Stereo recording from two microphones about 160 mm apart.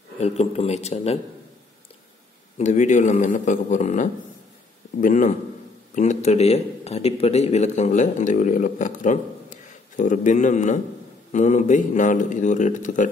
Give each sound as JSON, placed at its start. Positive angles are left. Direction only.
{"t": 0.2, "sound": "a man's voice", "side_deg": 40}
{"t": 2.5, "sound": "a man's voice", "side_deg": 45}